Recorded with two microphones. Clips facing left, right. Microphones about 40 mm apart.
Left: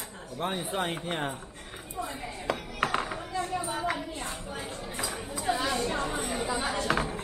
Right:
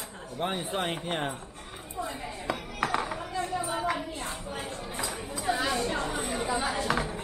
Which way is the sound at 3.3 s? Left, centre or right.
Centre.